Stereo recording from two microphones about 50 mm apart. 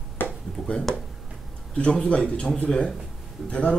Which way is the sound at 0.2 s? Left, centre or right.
Left.